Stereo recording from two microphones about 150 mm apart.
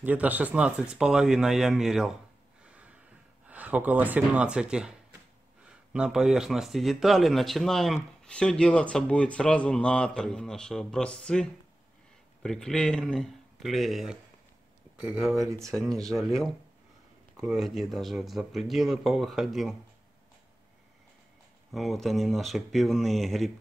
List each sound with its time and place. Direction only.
0.0 s speech: 10° right (ahead or behind)
2.6 s a sound: 10° right (ahead or behind)
3.4 s speech: 10° right (ahead or behind)
5.9 s speech: 5° right (ahead or behind)
15.3 s speech: 20° right (ahead or behind)
15.8 s speech: centre (ahead or behind)
21.7 s speech: centre (ahead or behind)